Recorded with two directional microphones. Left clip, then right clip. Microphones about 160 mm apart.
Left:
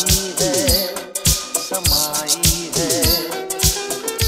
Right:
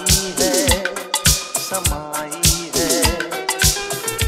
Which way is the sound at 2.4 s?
10° right (ahead or behind).